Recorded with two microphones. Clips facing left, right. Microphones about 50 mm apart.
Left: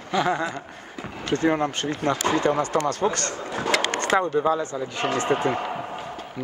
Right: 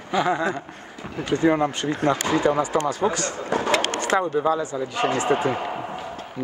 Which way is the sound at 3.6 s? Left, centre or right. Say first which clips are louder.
Right 2 dB; right.